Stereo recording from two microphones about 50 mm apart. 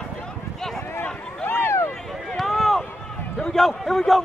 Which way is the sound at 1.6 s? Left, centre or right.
Left.